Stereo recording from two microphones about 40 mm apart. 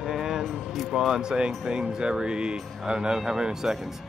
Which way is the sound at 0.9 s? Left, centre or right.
Centre.